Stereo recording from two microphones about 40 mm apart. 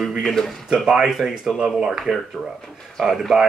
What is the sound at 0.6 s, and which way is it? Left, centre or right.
Speech, centre.